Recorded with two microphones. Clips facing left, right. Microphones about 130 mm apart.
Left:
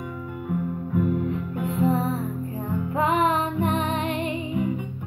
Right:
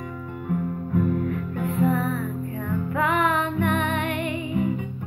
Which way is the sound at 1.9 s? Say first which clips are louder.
Even; 30° left (ahead or behind).